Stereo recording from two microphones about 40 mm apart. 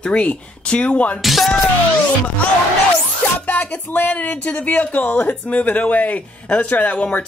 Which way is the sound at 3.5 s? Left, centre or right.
Left.